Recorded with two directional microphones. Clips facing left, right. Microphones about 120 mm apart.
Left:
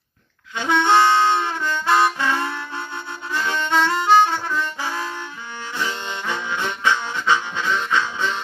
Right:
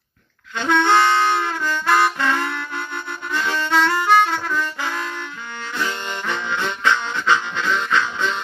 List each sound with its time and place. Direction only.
0.6 s harmonica: 15° left (ahead or behind)
5.8 s harmonica: 15° left (ahead or behind)